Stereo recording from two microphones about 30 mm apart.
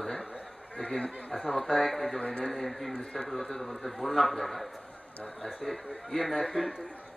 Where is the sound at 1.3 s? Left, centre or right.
Centre.